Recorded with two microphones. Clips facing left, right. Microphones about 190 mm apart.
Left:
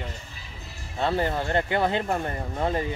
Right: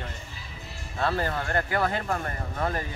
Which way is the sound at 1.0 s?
20° left (ahead or behind).